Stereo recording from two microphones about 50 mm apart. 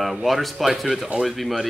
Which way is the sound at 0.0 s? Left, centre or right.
Centre.